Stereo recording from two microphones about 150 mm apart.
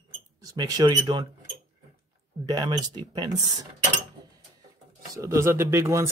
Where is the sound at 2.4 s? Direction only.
25° right (ahead or behind).